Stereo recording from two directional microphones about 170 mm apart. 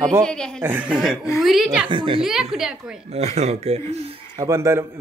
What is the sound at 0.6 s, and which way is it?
Speech, 10° right (ahead or behind).